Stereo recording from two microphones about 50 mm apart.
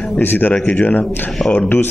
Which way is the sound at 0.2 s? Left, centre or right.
Left.